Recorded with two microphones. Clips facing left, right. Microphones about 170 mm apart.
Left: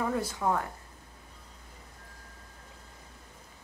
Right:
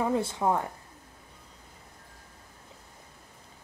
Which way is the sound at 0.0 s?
25° right (ahead or behind).